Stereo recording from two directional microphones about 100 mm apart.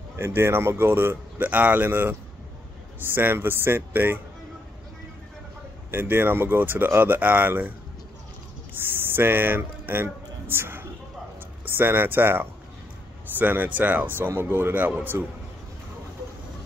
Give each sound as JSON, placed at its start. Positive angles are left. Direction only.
{"t": 0.2, "sound": "speech", "side_deg": -25}
{"t": 5.9, "sound": "speech", "side_deg": -20}
{"t": 8.7, "sound": "speech", "side_deg": -20}